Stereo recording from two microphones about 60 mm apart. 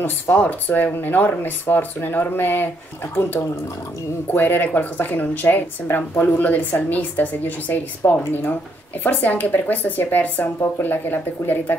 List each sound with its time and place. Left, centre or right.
0.0 s speech: left
4.4 s speech: left